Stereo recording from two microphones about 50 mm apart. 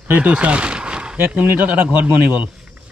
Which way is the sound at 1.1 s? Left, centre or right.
Right.